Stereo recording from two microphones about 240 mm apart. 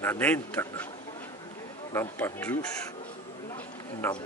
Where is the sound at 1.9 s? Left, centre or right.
Centre.